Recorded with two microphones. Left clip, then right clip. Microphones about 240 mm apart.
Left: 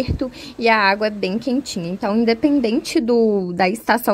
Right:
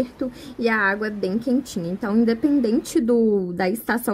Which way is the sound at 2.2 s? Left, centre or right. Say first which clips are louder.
Left 4 dB; left.